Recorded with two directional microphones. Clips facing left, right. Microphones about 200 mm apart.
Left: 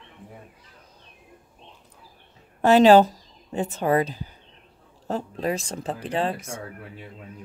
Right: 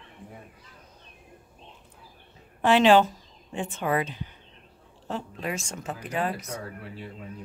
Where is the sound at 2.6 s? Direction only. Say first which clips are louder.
Left 4 dB; 40° left (ahead or behind).